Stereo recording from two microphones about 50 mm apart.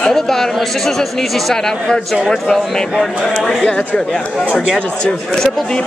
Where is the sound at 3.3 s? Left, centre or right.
Centre.